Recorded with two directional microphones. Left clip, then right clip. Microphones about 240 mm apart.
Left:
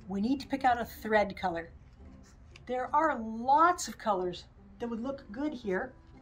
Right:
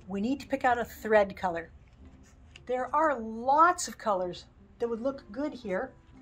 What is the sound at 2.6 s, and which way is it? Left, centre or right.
A woman's voice, centre.